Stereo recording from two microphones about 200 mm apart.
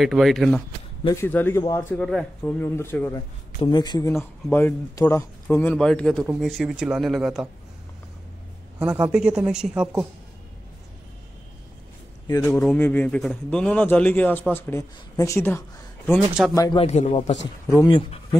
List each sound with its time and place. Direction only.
0.0 s a woman's voice: centre (ahead or behind)
1.0 s speech: 10° left (ahead or behind)
3.5 s a woman's voice: 20° left (ahead or behind); by 7.4 s centre (ahead or behind)
8.7 s a woman's voice: 5° right (ahead or behind)
12.3 s speech: 15° left (ahead or behind)
16.8 s a man's voice: 35° left (ahead or behind)
17.6 s speech: 20° left (ahead or behind)